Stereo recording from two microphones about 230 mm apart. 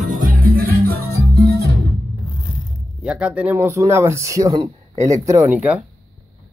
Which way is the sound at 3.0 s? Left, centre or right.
Centre.